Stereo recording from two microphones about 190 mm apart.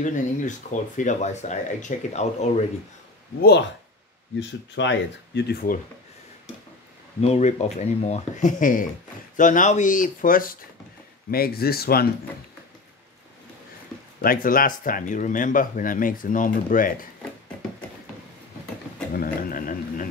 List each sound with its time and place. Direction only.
0.0 s speech: 40° left (ahead or behind)
4.4 s speech: 70° left (ahead or behind)
7.2 s speech: 35° left (ahead or behind); by 12.1 s 55° left (ahead or behind)
14.2 s speech: 50° left (ahead or behind)
19.1 s speech: 50° left (ahead or behind)